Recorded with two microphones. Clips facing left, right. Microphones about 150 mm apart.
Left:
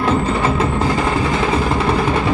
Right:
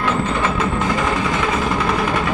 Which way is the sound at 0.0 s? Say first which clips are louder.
Left 3 dB; 35° left (ahead or behind).